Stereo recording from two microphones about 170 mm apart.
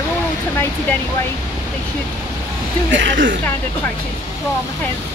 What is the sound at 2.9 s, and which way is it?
Speech, 90° right.